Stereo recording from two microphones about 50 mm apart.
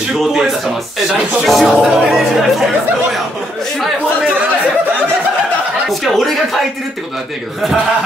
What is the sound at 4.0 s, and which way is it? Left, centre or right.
Chatter, right.